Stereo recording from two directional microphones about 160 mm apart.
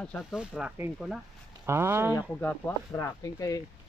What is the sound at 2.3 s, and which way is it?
Speech, 10° left (ahead or behind).